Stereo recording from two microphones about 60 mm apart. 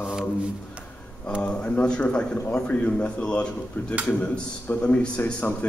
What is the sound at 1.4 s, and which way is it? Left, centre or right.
A man's voice, centre.